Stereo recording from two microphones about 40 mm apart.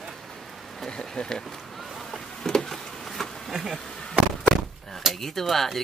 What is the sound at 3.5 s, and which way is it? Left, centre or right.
Speech, centre.